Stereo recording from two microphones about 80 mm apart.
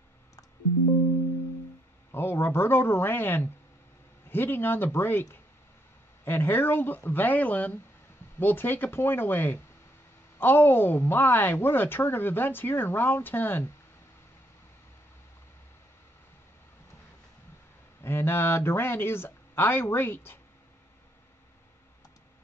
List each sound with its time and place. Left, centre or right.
2.1 s speech: left
6.2 s speech: left
18.0 s speech: left